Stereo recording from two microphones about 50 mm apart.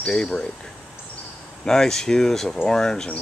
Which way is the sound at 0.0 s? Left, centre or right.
Left.